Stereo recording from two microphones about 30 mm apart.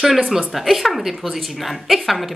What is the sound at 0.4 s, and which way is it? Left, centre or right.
A woman's voice, centre.